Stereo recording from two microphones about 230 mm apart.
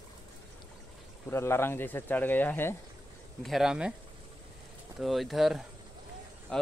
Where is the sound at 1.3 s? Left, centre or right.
Centre.